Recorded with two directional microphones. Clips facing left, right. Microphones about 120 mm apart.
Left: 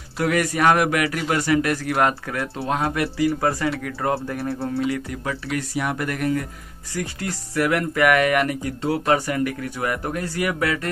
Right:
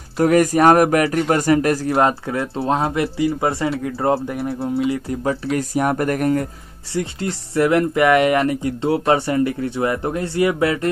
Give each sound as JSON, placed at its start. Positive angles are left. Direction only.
{"t": 0.2, "sound": "speech", "side_deg": -40}
{"t": 4.5, "sound": "music", "side_deg": 0}
{"t": 4.9, "sound": "speech", "side_deg": -30}
{"t": 6.9, "sound": "speech", "side_deg": -25}